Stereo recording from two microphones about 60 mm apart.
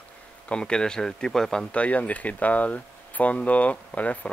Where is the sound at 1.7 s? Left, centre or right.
Left.